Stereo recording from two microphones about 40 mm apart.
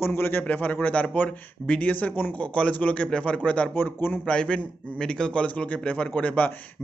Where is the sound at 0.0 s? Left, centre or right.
Left.